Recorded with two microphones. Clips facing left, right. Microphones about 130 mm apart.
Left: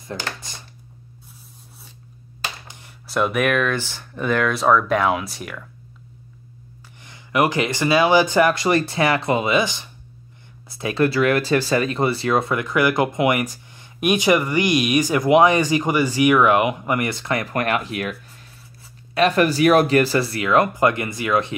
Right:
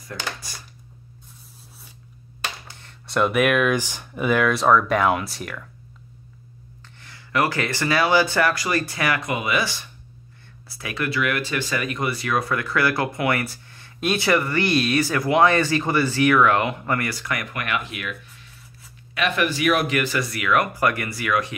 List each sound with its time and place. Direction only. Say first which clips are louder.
0.4 s speech: left 1 dB; 20° left (ahead or behind)
2.4 s a sound: left 1 dB; 10° left (ahead or behind)
3.1 s speech: even; centre (ahead or behind)
7.0 s speech: left 3 dB; 20° left (ahead or behind)